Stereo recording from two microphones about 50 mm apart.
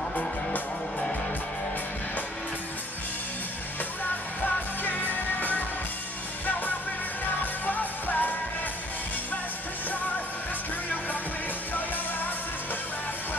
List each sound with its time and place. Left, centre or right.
4.8 s music: left
7.6 s music: left